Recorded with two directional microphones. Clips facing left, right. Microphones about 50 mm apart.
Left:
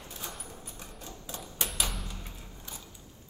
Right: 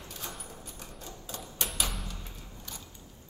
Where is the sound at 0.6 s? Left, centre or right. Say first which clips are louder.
Even; centre.